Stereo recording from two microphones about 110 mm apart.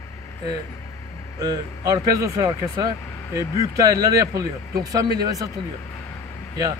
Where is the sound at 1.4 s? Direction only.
35° right (ahead or behind).